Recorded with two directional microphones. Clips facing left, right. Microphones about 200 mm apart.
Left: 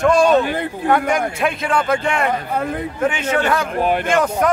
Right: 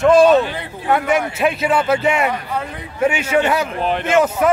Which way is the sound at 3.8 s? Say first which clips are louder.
Left 2 dB; 10° left (ahead or behind).